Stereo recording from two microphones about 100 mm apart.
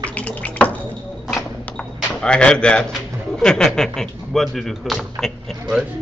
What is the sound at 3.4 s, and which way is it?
Speech, 5° left (ahead or behind).